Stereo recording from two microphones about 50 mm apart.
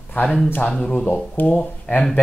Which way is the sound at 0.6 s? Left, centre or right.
Centre.